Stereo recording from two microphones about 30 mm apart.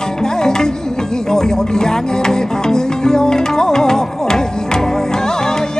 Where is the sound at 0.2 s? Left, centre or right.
Left.